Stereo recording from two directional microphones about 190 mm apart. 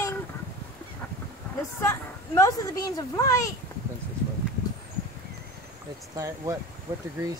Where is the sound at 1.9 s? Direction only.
15° left (ahead or behind).